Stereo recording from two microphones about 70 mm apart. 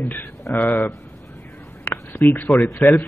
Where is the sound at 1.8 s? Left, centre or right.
Left.